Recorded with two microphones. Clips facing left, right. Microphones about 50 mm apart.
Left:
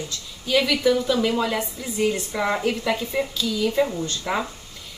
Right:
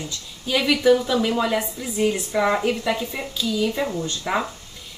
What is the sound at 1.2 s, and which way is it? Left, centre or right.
Speech, centre.